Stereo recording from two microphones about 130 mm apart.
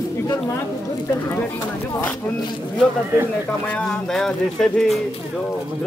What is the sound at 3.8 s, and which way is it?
Speech, 5° left (ahead or behind).